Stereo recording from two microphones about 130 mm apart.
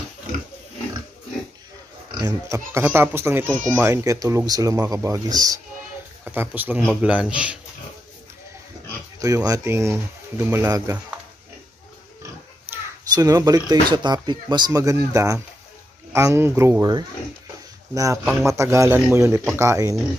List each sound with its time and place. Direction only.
2.0 s speech: 30° right (ahead or behind)
6.2 s a man's voice: 15° right (ahead or behind)
9.2 s speech: 25° right (ahead or behind)
13.1 s speech: 30° right (ahead or behind)
17.9 s speech: 25° right (ahead or behind)